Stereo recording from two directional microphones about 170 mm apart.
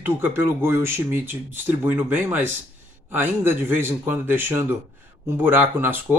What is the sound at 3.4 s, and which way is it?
Speech, 15° right (ahead or behind).